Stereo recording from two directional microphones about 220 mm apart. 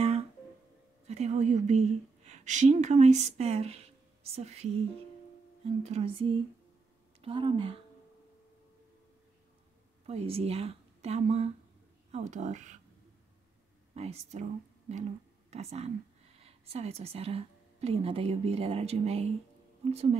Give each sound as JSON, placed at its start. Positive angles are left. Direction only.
{"t": 1.0, "sound": "a woman's voice", "side_deg": -30}
{"t": 5.9, "sound": "a woman's voice", "side_deg": -25}
{"t": 10.0, "sound": "speech", "side_deg": -25}
{"t": 13.9, "sound": "a woman's voice", "side_deg": -30}